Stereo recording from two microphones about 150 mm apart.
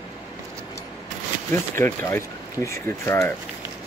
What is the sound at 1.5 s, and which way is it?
Speech, 15° left (ahead or behind).